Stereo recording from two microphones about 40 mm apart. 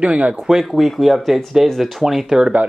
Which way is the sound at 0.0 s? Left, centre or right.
Right.